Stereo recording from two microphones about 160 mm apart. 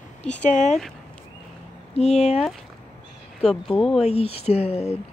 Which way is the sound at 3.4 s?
5° left (ahead or behind).